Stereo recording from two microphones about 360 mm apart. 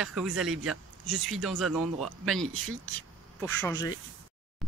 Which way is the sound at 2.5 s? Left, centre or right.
Right.